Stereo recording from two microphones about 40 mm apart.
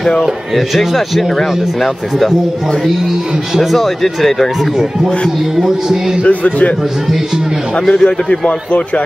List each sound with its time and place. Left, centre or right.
0.2 s speech: centre
3.7 s speech: centre
5.6 s speech: centre
6.2 s speech: left
8.0 s a man's voice: left